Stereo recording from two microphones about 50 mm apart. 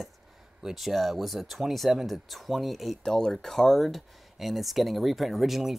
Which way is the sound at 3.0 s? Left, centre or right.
Centre.